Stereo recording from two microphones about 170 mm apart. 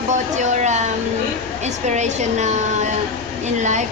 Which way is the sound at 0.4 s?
45° right (ahead or behind).